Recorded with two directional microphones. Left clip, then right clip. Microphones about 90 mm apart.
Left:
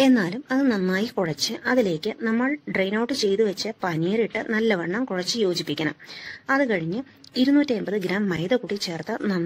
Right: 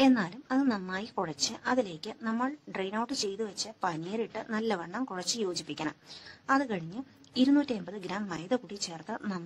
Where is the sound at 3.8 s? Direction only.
20° left (ahead or behind).